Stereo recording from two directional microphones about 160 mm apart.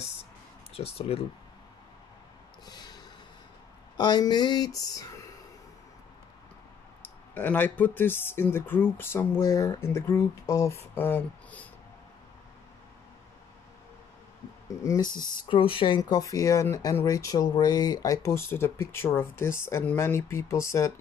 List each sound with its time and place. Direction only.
0.7 s speech: 40° left (ahead or behind)
2.6 s snort: 25° left (ahead or behind)
3.9 s speech: 25° left (ahead or behind)
7.0 s speech: 10° left (ahead or behind)
14.8 s speech: 20° left (ahead or behind)